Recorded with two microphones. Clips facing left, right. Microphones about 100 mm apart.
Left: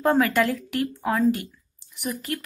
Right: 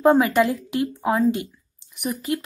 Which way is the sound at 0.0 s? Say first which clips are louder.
Right 4 dB; 15° right (ahead or behind).